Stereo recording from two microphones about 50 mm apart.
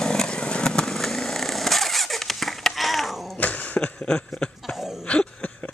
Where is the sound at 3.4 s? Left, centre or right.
Left.